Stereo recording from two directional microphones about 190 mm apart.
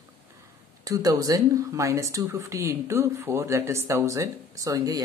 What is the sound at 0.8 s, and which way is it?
Speech, 20° right (ahead or behind).